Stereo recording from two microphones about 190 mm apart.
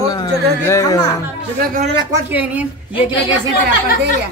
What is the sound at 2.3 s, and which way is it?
Speech, 10° right (ahead or behind).